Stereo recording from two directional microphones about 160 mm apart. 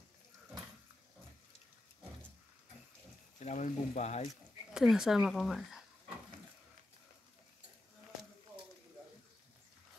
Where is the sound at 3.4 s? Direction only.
45° left (ahead or behind).